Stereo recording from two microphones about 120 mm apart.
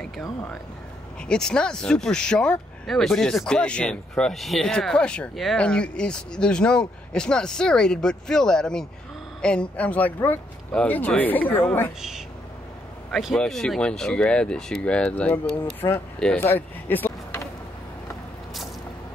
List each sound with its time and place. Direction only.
0.0 s speech: 5° left (ahead or behind)
13.1 s speech: centre (ahead or behind)
16.3 s vehicle: 15° left (ahead or behind)